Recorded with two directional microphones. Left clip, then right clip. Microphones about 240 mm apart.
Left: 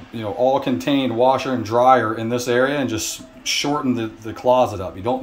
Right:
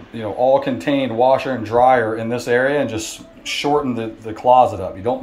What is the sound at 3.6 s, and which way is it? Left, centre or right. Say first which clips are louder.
Speech: right 4 dB; centre.